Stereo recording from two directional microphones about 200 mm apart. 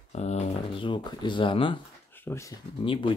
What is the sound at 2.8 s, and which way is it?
Speech, 25° left (ahead or behind).